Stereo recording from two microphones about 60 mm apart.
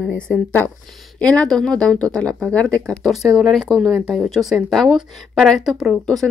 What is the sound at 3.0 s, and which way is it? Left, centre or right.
Speech, centre.